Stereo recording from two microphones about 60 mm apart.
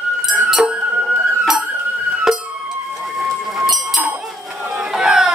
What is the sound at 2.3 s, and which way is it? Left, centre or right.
Music, centre.